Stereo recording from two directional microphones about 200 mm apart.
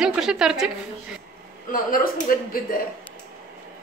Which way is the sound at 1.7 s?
45° left (ahead or behind).